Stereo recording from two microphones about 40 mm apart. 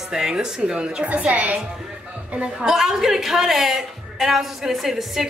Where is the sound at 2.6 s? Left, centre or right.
Centre.